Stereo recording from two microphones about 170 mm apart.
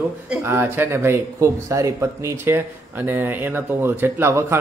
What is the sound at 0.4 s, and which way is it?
Speech, 15° right (ahead or behind).